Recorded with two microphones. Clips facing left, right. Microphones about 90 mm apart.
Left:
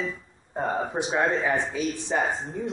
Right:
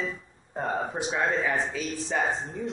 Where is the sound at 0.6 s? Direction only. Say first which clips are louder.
Left 2 dB; centre (ahead or behind).